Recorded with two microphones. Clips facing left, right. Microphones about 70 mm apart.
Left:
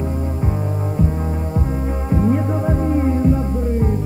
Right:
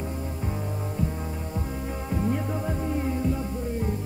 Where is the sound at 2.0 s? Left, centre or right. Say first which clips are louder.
Left 10 dB; left.